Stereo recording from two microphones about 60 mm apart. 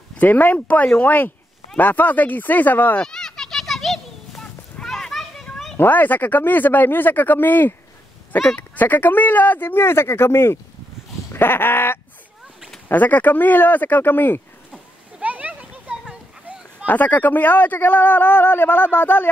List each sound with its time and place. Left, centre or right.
0.2 s speech: left
3.0 s children playing: centre
4.4 s a sound: centre
4.9 s children playing: centre
5.8 s speech: left
15.2 s children playing: right
16.8 s speech: left